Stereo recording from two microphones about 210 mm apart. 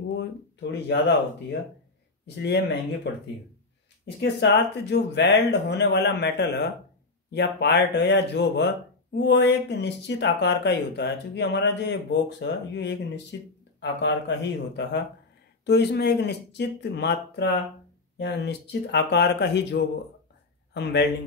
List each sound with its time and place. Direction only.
0.2 s speech: 55° left (ahead or behind)
2.2 s speech: 55° left (ahead or behind)